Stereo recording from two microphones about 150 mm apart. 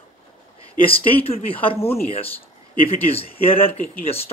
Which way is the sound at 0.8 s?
40° left (ahead or behind).